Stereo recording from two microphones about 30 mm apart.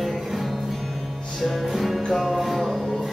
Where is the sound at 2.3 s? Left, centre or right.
Centre.